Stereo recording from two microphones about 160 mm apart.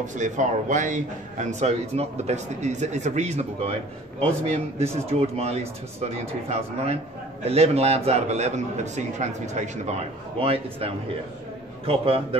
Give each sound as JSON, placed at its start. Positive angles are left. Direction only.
{"t": 0.0, "sound": "speech", "side_deg": -50}